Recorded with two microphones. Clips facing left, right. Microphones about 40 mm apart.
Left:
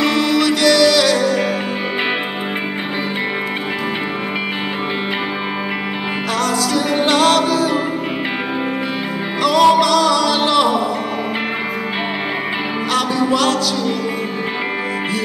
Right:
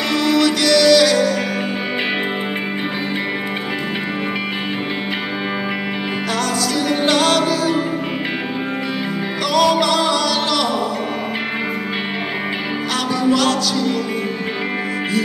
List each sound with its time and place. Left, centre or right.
0.3 s music: centre
6.7 s music: centre
9.4 s music: centre
9.8 s music: centre
10.2 s music: left
12.9 s music: centre